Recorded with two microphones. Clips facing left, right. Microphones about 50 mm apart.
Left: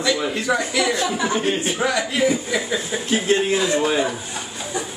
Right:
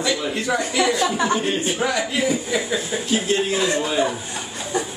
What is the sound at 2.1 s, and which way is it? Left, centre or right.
Speech, centre.